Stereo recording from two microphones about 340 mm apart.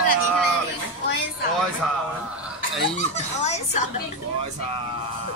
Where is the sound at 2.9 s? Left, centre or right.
Centre.